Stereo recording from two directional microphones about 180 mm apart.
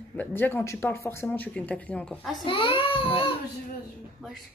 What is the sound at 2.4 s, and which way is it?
Laughter, 30° left (ahead or behind).